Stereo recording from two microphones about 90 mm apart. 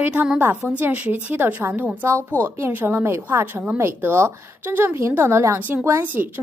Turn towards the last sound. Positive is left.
turn(degrees=-20)  # may be behind; listen again after turning